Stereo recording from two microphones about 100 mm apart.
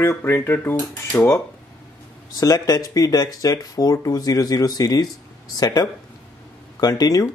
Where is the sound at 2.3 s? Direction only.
35° left (ahead or behind).